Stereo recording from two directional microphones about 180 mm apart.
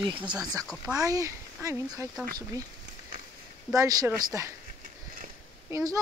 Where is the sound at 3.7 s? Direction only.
20° right (ahead or behind).